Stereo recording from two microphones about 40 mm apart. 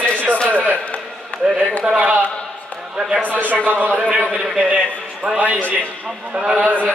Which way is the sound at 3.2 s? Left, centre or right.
Right.